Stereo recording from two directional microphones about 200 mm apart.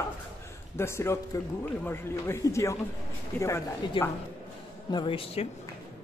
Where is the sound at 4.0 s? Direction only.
25° left (ahead or behind).